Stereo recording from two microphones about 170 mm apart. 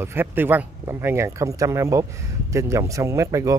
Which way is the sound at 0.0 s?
10° right (ahead or behind).